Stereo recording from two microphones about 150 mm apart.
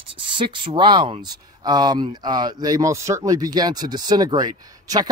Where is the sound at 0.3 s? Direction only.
35° right (ahead or behind).